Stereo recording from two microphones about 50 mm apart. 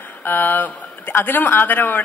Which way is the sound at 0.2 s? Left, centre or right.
Left.